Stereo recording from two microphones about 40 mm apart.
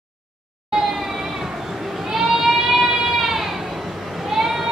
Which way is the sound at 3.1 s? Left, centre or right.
Centre.